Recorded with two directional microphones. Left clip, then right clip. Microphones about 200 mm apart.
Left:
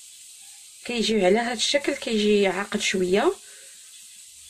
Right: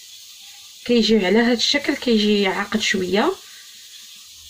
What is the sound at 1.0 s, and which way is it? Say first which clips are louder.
Speech: right 3 dB; 55° left (ahead or behind).